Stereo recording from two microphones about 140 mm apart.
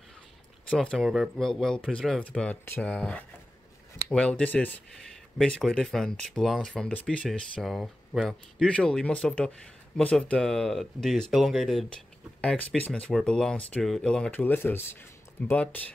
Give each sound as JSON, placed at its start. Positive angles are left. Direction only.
{"t": 0.7, "sound": "speech", "side_deg": 5}